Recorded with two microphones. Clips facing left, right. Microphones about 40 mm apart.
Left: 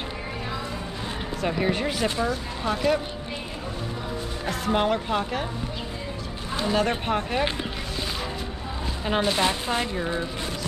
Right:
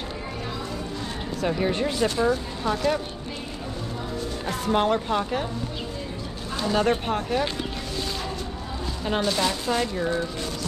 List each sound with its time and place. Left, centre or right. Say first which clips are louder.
1.4 s a woman's voice: right 1 dB; centre
4.6 s a woman's voice: right 1 dB; centre
6.7 s a woman's voice: right 1 dB; centre
9.0 s speech: left 1 dB; left